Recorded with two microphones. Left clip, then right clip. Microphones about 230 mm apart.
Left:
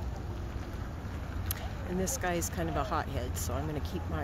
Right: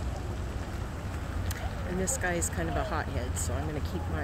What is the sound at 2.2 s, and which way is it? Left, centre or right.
Speech, centre.